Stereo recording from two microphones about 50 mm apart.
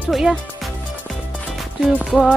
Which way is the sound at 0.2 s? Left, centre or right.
Centre.